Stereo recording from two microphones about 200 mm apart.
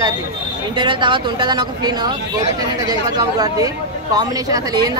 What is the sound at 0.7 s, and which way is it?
Speech, 25° right (ahead or behind).